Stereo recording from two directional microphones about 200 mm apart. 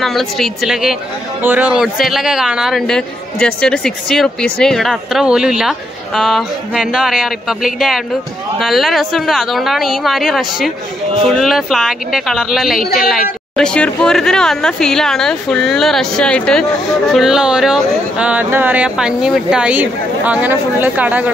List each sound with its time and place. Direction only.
0.0 s speech: centre (ahead or behind)
12.8 s speech: 50° left (ahead or behind)
13.6 s speech: 5° left (ahead or behind)